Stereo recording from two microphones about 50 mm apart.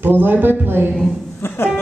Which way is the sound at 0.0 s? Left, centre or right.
Right.